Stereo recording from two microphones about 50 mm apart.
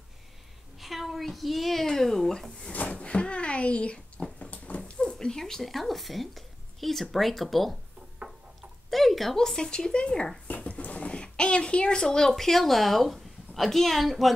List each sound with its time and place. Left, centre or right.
0.7 s a woman's voice: centre
2.7 s a sound: left
4.5 s speech: left; by 7.7 s centre
8.9 s speech: centre